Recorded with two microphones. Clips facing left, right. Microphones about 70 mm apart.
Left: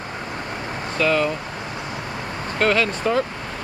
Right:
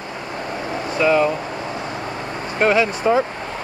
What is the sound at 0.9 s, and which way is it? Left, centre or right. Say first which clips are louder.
Speech: right 4 dB; centre.